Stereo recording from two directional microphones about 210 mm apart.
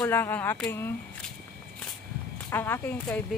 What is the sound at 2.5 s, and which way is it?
Speech, 10° left (ahead or behind).